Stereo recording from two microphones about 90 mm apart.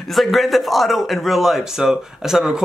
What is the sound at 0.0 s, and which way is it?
Speech, centre (ahead or behind).